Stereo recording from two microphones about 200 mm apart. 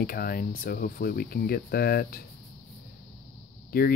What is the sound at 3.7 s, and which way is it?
Speech, 50° left (ahead or behind).